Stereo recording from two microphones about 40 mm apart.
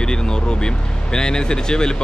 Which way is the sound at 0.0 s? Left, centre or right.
Centre.